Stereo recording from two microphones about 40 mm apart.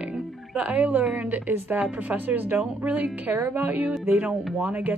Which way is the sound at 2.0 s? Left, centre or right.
Right.